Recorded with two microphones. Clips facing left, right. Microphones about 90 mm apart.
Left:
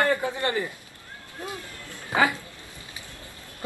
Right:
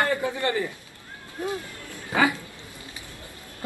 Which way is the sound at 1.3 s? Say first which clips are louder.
Right 6 dB; 20° right (ahead or behind).